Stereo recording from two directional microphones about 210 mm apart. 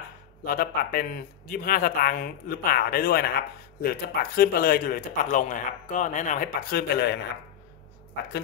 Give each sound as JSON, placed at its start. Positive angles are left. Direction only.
{"t": 0.4, "sound": "speech", "side_deg": 45}